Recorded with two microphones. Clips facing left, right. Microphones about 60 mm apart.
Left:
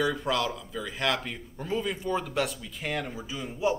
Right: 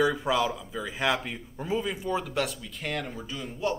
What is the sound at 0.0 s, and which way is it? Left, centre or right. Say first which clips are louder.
Speech: right 2 dB; centre.